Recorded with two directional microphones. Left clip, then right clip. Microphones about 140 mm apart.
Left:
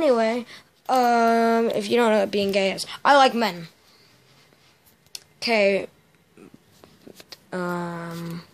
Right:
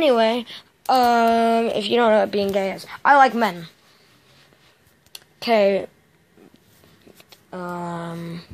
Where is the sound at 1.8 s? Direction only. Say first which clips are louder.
Right 3 dB; 25° left (ahead or behind).